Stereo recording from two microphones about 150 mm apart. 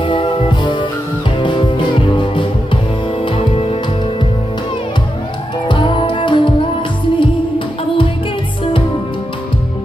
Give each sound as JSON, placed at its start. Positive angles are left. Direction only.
{"t": 0.0, "sound": "music", "side_deg": 30}
{"t": 5.7, "sound": "music", "side_deg": 35}